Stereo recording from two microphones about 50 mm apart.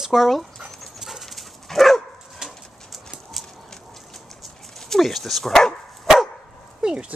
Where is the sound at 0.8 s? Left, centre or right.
Centre.